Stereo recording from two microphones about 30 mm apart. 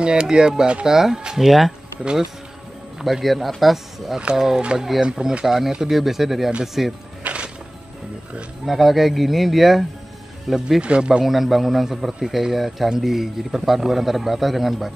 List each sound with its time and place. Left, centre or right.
0.0 s a man's voice: right
1.3 s a man's voice: centre
3.0 s a man's voice: centre
7.2 s music: right
8.6 s speech: centre
10.8 s speech: right
11.2 s a man's voice: centre